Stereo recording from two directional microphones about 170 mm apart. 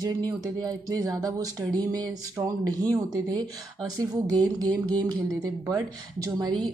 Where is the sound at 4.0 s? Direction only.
25° right (ahead or behind).